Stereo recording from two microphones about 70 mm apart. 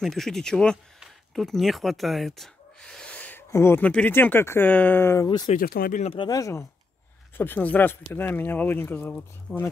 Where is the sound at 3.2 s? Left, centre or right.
Left.